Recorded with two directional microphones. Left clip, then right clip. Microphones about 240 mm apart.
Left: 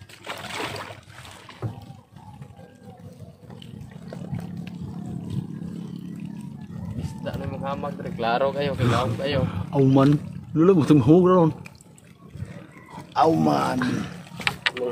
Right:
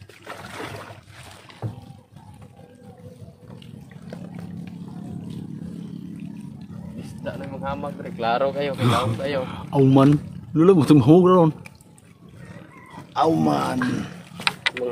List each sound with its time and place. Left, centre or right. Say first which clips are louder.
0.3 s a sound: left 3 dB; left
1.6 s water: even; centre
7.6 s speech: right 1 dB; centre
8.7 s speech: right 2 dB; centre
13.1 s speech: even; centre
14.4 s a sound: right 1 dB; right